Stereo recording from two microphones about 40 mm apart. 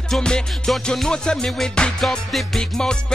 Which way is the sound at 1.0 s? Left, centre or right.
Centre.